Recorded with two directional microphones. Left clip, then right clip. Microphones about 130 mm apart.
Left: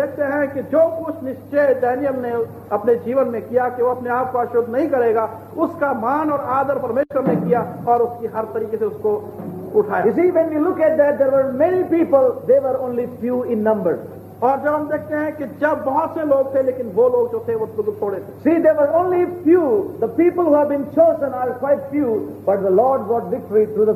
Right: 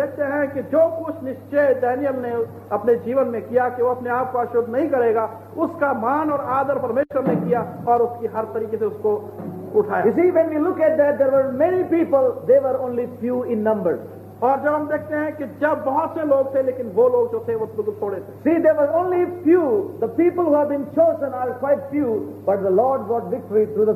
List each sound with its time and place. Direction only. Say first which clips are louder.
0.0 s a man's voice: left 2 dB; 25° right (ahead or behind)